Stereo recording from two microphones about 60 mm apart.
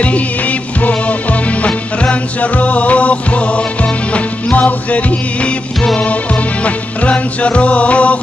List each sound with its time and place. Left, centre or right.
0.0 s music: left